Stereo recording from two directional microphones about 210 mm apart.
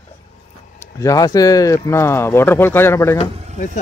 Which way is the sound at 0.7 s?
15° left (ahead or behind).